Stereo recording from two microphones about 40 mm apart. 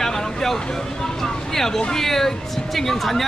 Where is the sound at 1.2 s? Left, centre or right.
Centre.